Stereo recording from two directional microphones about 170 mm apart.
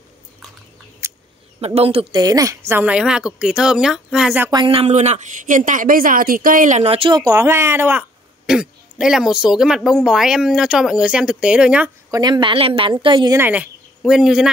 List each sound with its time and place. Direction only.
1.0 s a sound: 15° right (ahead or behind)
1.8 s speech: 35° right (ahead or behind)
2.2 s a woman's voice: 20° right (ahead or behind)
2.7 s speech: 10° right (ahead or behind)
4.5 s speech: 30° right (ahead or behind); by 11.9 s 5° right (ahead or behind)
12.1 s a woman's voice: 25° right (ahead or behind)
13.4 s speech: 10° right (ahead or behind)